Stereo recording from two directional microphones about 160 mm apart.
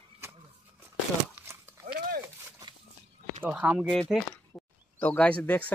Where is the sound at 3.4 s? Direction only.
10° right (ahead or behind).